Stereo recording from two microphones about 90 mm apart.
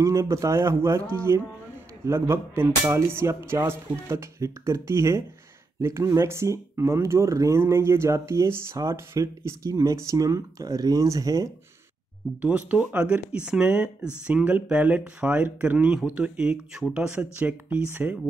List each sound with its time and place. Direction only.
0.0 s speech: 35° right (ahead or behind)
12.4 s speech: 15° right (ahead or behind)